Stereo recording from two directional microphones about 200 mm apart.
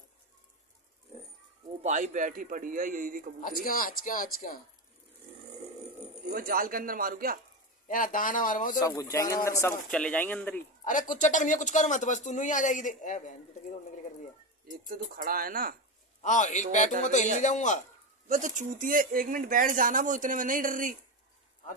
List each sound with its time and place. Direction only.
1.8 s speech: 35° right (ahead or behind)
3.6 s speech: 45° left (ahead or behind)
6.3 s speech: 45° right (ahead or behind)
7.9 s speech: 45° left (ahead or behind)
8.8 s speech: 15° left (ahead or behind)
10.8 s speech: 40° left (ahead or behind)
14.9 s speech: 45° right (ahead or behind)
16.2 s a man's voice: 40° left (ahead or behind)
18.3 s speech: 40° right (ahead or behind)